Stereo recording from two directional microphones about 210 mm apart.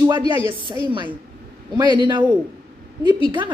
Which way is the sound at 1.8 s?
20° right (ahead or behind).